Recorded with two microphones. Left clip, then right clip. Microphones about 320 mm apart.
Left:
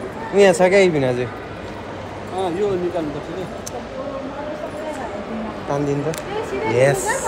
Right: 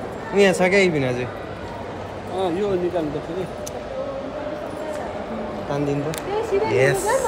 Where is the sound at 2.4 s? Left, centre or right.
Centre.